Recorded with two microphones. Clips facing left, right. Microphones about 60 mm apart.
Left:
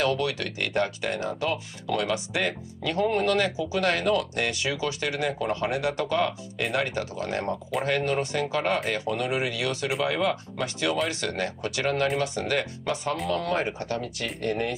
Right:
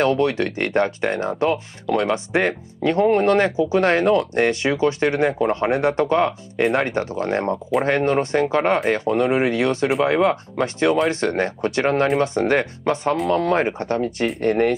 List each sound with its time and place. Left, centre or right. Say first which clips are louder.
0.0 s speech: right 7 dB; right
14.2 s speech: right 11 dB; right